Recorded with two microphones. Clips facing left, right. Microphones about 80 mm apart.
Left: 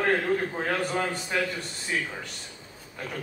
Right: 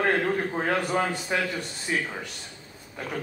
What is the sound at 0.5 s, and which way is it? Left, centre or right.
Speech, centre.